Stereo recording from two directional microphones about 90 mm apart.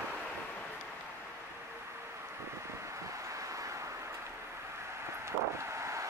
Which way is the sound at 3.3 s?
40° right (ahead or behind).